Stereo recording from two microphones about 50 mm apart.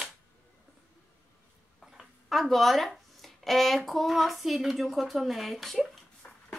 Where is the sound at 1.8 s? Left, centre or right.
Centre.